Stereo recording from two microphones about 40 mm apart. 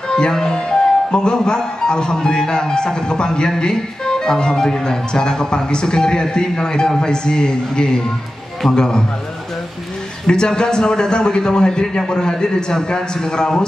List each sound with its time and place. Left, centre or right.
0.1 s a man's voice: centre
10.2 s speech: centre